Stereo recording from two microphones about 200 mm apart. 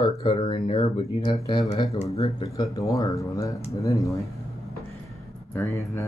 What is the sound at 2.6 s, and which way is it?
Speech, 15° left (ahead or behind).